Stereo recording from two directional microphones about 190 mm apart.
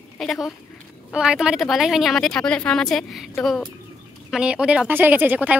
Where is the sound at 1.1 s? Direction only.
5° right (ahead or behind).